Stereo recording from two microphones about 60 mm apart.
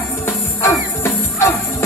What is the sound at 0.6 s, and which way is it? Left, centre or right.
Music, left.